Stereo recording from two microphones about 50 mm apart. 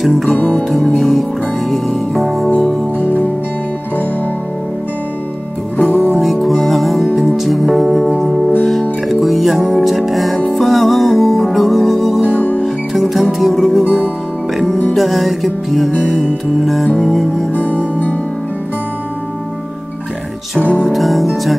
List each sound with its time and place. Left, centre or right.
0.0 s music: centre
5.9 s music: right
6.2 s music: centre
12.4 s music: left
12.6 s music: centre
15.0 s music: centre
20.9 s music: centre